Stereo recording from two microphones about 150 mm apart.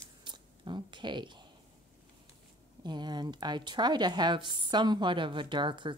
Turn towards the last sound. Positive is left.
turn(degrees=-30)  # may be behind; listen again after turning